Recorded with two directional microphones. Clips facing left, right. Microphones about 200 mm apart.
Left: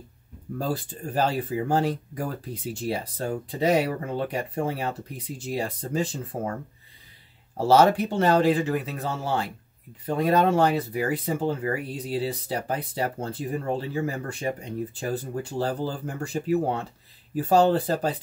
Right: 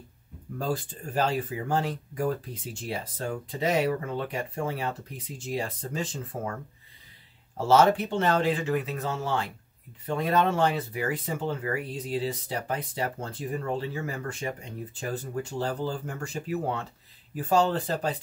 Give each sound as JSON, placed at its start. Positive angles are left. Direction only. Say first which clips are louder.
{"t": 1.1, "sound": "speech", "louder": "left 2 dB", "side_deg": 35}
{"t": 7.5, "sound": "speech", "louder": "left 2 dB", "side_deg": 35}